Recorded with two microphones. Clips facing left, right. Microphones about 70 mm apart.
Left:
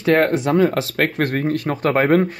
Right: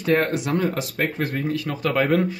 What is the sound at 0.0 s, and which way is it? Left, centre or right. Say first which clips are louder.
A man's voice: left 5 dB; left.